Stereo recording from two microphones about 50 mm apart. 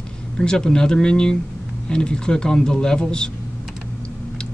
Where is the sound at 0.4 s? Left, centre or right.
Centre.